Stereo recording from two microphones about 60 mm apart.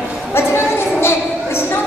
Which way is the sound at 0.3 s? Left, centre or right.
Left.